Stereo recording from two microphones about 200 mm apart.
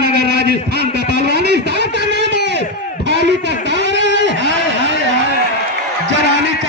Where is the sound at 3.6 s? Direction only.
65° right (ahead or behind).